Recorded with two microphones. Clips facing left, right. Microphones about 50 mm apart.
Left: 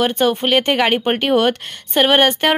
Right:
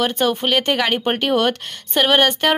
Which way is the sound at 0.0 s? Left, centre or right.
Centre.